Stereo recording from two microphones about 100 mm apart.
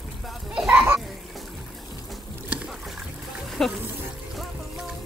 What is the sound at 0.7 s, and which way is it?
Children playing, 25° right (ahead or behind).